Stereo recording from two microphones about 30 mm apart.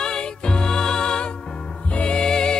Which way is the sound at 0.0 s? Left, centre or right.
Left.